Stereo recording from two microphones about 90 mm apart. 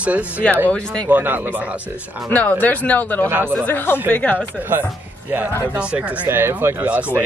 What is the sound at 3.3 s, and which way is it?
Speech, 25° right (ahead or behind).